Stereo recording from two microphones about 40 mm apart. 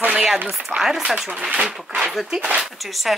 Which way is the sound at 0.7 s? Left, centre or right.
Centre.